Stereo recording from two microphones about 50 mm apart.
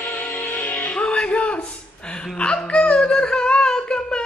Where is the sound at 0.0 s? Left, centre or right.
Left.